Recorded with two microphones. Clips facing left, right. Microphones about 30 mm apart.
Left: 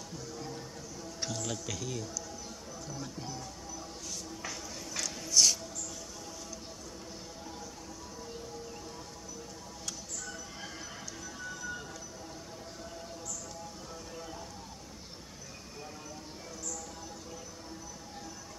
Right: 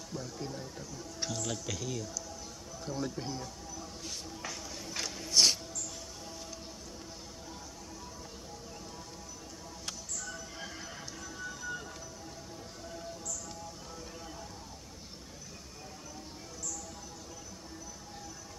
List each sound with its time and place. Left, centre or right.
0.1 s speech: centre
1.2 s a man's voice: centre
2.8 s speech: right
4.8 s a sound: right
5.3 s music: right